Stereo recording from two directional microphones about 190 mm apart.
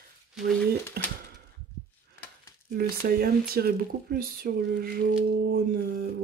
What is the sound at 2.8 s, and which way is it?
Speech, 55° right (ahead or behind).